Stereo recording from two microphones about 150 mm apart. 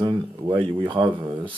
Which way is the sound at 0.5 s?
30° right (ahead or behind).